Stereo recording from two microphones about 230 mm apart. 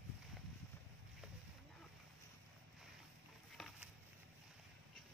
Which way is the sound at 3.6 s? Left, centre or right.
Centre.